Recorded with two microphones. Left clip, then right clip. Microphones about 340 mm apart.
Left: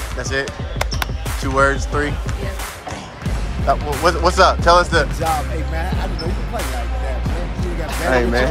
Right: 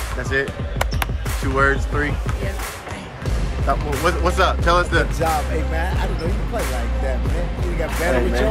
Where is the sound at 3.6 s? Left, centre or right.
Centre.